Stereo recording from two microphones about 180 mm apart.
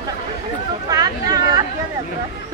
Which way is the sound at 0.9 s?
20° right (ahead or behind).